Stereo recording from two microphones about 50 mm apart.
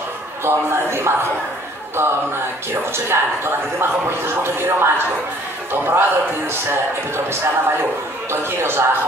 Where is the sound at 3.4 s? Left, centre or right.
Right.